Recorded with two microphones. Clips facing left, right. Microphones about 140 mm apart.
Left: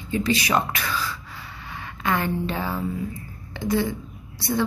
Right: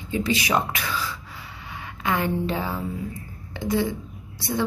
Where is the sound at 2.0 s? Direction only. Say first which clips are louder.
Even; 15° right (ahead or behind).